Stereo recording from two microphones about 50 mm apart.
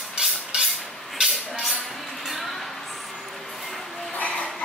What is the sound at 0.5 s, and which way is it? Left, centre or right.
Cutlery, centre.